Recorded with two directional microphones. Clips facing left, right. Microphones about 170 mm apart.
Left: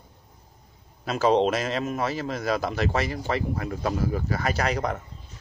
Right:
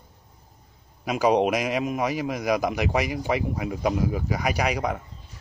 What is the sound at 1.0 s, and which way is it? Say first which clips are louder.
A man's voice: even; 15° right (ahead or behind).